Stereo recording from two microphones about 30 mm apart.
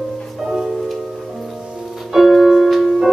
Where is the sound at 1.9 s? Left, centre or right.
Centre.